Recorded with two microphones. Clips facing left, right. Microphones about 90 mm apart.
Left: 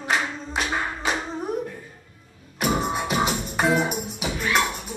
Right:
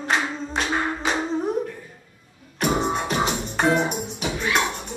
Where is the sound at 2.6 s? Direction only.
5° left (ahead or behind).